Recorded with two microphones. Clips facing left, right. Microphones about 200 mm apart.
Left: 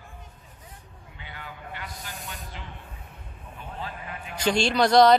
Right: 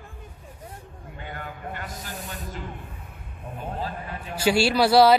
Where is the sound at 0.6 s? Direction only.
50° right (ahead or behind).